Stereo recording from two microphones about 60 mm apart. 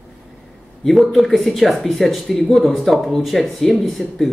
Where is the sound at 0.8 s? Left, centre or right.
Centre.